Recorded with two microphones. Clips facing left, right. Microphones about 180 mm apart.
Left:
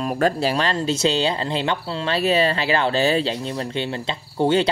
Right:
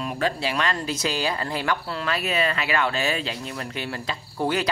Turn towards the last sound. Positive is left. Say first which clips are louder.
# left 6 dB
turn(degrees=25)  # may be behind; listen again after turning